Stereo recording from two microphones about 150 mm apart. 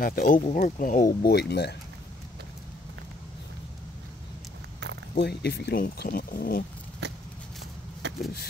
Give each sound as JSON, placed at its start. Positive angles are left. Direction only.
{"t": 0.0, "sound": "speech", "side_deg": 65}
{"t": 5.1, "sound": "speech", "side_deg": 90}
{"t": 7.0, "sound": "a sound", "side_deg": -90}